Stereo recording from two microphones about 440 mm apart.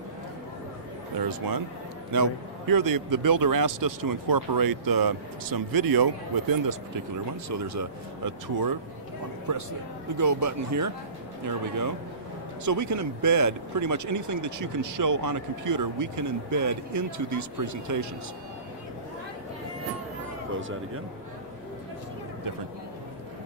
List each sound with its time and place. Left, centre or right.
2.1 s a man's voice: right
10.1 s speech: right